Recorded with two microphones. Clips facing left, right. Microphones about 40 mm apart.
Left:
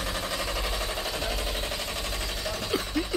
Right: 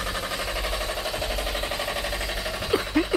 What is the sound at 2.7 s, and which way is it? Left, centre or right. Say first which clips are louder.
Sewing machine: right 7 dB; centre.